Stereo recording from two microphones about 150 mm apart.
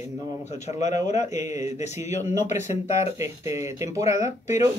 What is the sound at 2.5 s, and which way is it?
Speech, 15° right (ahead or behind).